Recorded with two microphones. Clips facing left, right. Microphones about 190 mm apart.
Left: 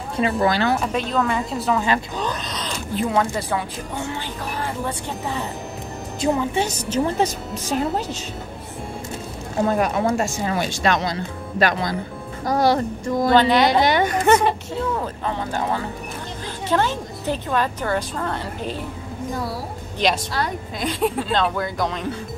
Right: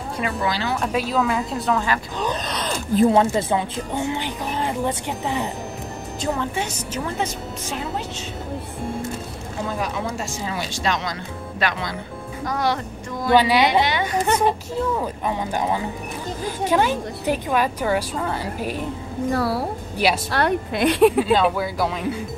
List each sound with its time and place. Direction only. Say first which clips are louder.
0.4 s speech: left 6 dB; 55° left (ahead or behind)
0.7 s a woman's voice: even; centre (ahead or behind)
2.4 s zipper: right 3 dB; 55° right (ahead or behind)
3.0 s speech: right 5 dB; 25° right (ahead or behind)
6.2 s a woman's voice: left 4 dB; 15° left (ahead or behind)
6.5 s speech: left 5 dB; 30° left (ahead or behind)
9.7 s speech: left 7 dB; 55° left (ahead or behind)
11.6 s speech: left 5 dB; 40° left (ahead or behind)
13.3 s a woman's voice: even; 10° right (ahead or behind)
13.8 s a woman's voice: left 5 dB; 50° left (ahead or behind)
14.2 s speech: left 3 dB; 75° left (ahead or behind)
15.0 s a woman's voice: right 1 dB; 15° right (ahead or behind)
19.3 s speech: right 6 dB; 70° right (ahead or behind)
21.3 s a woman's voice: right 3 dB; 5° right (ahead or behind)